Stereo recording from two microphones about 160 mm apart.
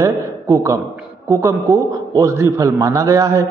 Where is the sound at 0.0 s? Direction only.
20° right (ahead or behind).